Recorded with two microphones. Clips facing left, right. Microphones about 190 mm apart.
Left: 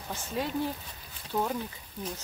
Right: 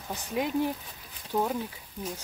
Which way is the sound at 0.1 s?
15° right (ahead or behind).